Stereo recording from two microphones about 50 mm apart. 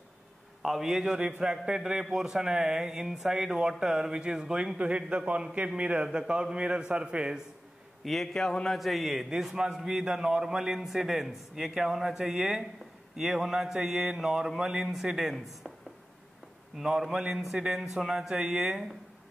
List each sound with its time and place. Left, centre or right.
0.6 s a man's voice: centre
8.0 s a man's voice: centre
8.7 s a man's voice: centre
16.7 s a man's voice: centre